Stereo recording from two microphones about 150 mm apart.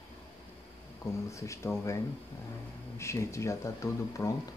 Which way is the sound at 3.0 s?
20° left (ahead or behind).